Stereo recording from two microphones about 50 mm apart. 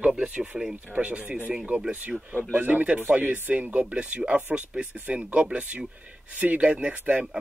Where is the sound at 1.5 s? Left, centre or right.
Centre.